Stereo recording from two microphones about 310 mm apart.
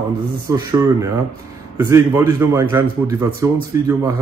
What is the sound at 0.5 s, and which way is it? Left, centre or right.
Speech, centre.